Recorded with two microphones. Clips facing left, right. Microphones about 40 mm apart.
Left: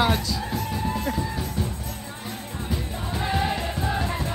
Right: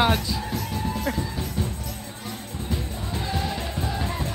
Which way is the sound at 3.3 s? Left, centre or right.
Left.